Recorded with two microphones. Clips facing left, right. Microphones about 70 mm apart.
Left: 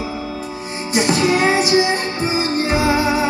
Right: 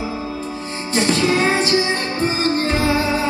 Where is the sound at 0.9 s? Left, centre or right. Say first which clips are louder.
Left 1 dB; centre.